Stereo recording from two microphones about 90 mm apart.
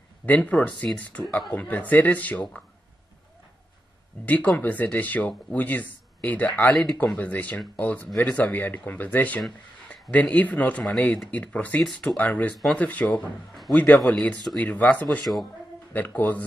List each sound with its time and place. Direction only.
0.3 s speech: 15° left (ahead or behind)
1.2 s speech: centre (ahead or behind)
1.5 s speech: 15° left (ahead or behind)
4.2 s speech: 15° left (ahead or behind)
11.8 s speech: centre (ahead or behind)
12.2 s speech: 15° left (ahead or behind)
14.0 s speech: 5° left (ahead or behind)
14.6 s speech: 15° left (ahead or behind)
15.0 s speech: centre (ahead or behind)
15.9 s speech: 20° left (ahead or behind)